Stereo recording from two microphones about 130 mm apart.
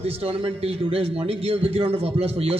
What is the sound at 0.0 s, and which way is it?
Speech, 50° right (ahead or behind).